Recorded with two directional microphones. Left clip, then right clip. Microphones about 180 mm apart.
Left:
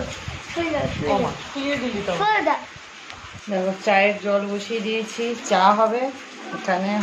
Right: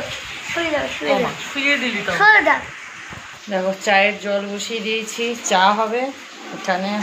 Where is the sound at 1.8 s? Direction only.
10° right (ahead or behind).